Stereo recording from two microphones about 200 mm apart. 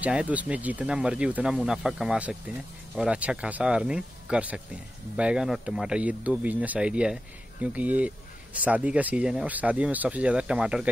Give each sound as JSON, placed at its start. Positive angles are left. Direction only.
{"t": 0.0, "sound": "speech", "side_deg": -5}